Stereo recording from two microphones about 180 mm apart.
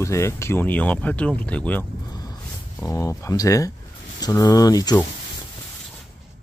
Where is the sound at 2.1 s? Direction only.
20° left (ahead or behind).